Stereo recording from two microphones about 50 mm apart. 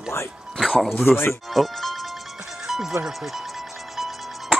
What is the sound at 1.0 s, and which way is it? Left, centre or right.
Speech, left.